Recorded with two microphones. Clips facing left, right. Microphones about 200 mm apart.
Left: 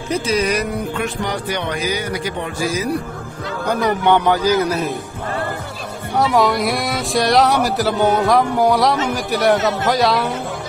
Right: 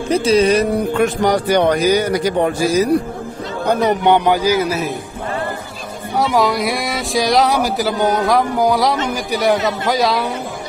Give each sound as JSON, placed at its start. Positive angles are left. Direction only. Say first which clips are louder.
{"t": 0.2, "sound": "speech", "louder": "right 7 dB", "side_deg": -30}
{"t": 0.9, "sound": "a man's voice", "louder": "right 7 dB", "side_deg": -45}
{"t": 3.8, "sound": "speech", "louder": "right 1 dB", "side_deg": -20}
{"t": 6.1, "sound": "speech", "louder": "even", "side_deg": 0}